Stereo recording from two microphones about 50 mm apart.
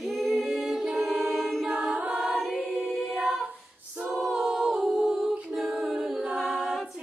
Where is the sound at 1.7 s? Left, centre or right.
Centre.